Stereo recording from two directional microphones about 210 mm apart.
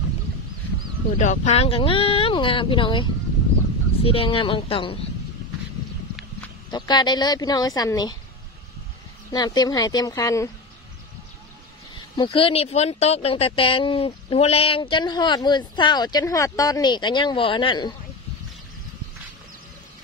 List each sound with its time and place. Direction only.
1.1 s speech: 35° left (ahead or behind)
6.7 s speech: 20° left (ahead or behind)
9.3 s speech: 20° left (ahead or behind)
11.9 s speech: 25° left (ahead or behind)